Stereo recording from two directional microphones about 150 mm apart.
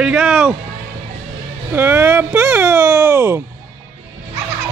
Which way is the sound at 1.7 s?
15° right (ahead or behind).